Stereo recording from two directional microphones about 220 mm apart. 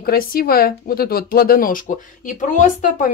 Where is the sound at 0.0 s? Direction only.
40° left (ahead or behind).